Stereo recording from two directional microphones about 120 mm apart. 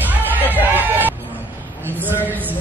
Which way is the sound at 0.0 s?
15° right (ahead or behind).